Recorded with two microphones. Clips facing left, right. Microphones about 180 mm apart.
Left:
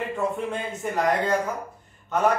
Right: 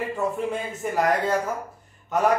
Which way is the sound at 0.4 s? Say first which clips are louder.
Right 2 dB; centre (ahead or behind).